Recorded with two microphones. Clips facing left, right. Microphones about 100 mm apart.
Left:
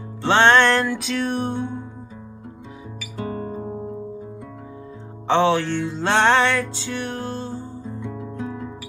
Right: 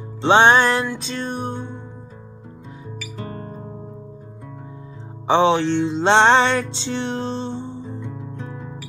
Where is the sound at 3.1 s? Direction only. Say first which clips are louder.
Left 7 dB; 5° left (ahead or behind).